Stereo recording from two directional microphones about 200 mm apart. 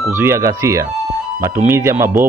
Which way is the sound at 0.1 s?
10° right (ahead or behind).